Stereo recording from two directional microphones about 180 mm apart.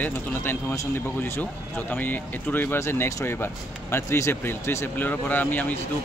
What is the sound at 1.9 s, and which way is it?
Speech, 10° left (ahead or behind).